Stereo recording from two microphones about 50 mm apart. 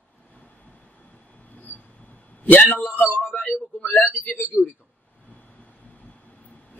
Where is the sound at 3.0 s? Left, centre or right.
Left.